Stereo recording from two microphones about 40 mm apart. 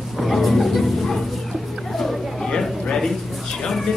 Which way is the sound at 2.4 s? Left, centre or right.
Centre.